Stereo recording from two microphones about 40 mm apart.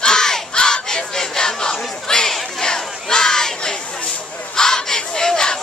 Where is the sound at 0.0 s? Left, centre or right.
Centre.